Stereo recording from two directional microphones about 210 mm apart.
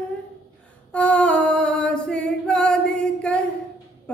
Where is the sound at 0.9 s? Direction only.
5° left (ahead or behind).